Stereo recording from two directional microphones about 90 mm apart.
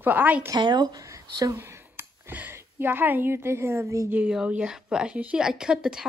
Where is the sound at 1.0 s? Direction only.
35° right (ahead or behind).